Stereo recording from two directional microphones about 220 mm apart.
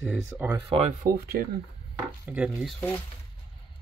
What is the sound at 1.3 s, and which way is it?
Speech, 45° right (ahead or behind).